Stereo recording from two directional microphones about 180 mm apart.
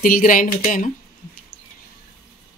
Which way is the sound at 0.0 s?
50° left (ahead or behind).